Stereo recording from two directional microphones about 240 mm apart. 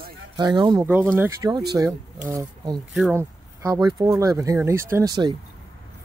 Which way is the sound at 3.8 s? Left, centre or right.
Centre.